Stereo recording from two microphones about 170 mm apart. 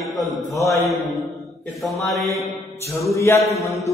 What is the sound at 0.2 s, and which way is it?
A man's voice, centre (ahead or behind).